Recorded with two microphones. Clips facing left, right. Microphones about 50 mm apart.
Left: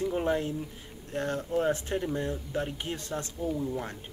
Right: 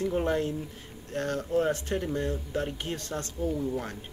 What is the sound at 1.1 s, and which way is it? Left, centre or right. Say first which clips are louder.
Speech: right 2 dB; centre.